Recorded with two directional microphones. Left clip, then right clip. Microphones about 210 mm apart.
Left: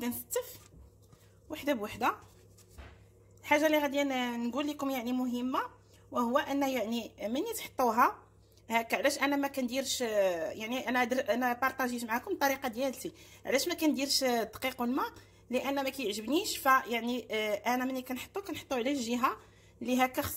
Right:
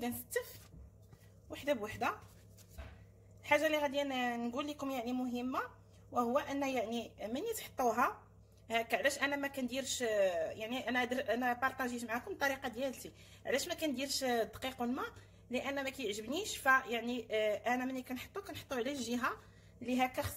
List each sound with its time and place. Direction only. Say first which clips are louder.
1.5 s speech: left 3 dB; 30° left (ahead or behind)
3.4 s speech: left 4 dB; 30° left (ahead or behind)